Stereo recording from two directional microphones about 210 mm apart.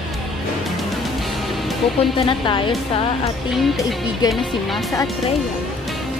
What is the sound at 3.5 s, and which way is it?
Speech, centre (ahead or behind).